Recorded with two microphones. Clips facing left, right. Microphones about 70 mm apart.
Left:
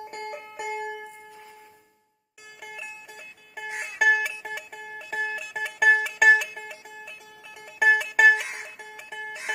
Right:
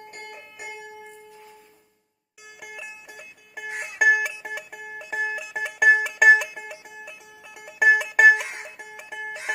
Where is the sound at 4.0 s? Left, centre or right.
Centre.